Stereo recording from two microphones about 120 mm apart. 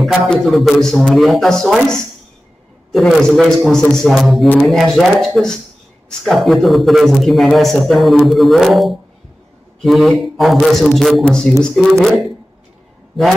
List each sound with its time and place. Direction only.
0.0 s a man's voice: centre (ahead or behind)
2.9 s a man's voice: centre (ahead or behind)